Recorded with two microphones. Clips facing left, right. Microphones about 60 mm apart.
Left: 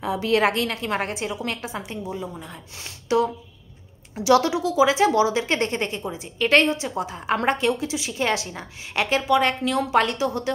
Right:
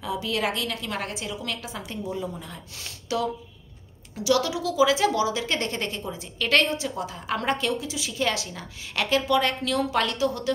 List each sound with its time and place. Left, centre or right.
0.0 s a woman's voice: left
1.8 s a woman's voice: centre
3.1 s a woman's voice: left